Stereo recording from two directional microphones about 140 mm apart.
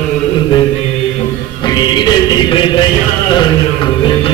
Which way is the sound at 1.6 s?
30° left (ahead or behind).